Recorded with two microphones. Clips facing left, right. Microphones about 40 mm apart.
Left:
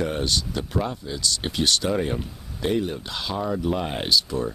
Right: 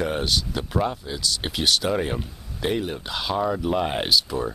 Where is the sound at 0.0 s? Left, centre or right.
Centre.